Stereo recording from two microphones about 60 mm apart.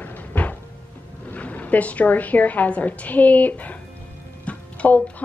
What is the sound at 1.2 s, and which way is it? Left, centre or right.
A woman's voice, left.